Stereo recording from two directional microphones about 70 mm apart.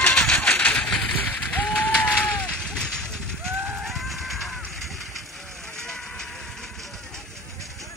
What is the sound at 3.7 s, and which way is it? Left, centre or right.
Music, centre.